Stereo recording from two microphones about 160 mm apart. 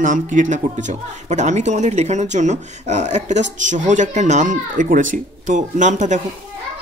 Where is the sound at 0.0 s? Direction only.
55° right (ahead or behind).